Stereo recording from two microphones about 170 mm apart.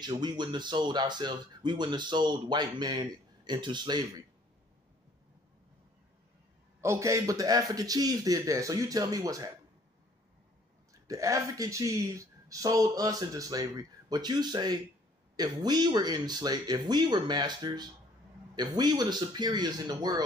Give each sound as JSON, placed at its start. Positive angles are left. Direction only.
{"t": 0.0, "sound": "speech", "side_deg": -25}
{"t": 6.8, "sound": "speech", "side_deg": -15}
{"t": 10.9, "sound": "speech", "side_deg": -20}